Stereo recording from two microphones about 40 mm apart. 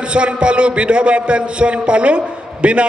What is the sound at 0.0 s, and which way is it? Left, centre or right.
A man's voice, right.